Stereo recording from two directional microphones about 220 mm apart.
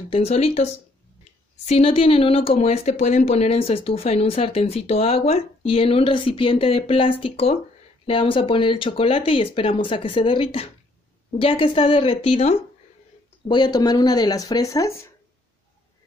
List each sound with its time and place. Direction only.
0.1 s speech: 30° left (ahead or behind)